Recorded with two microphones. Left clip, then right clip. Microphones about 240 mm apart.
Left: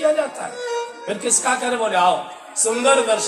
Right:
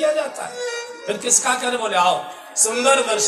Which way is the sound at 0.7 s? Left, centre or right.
Right.